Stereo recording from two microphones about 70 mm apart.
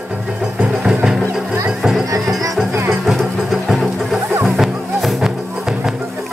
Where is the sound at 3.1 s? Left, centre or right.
Centre.